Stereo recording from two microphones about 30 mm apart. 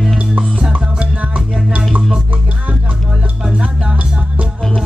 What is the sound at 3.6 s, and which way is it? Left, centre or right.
Music, right.